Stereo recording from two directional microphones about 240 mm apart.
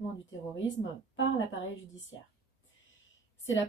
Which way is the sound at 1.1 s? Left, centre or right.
Left.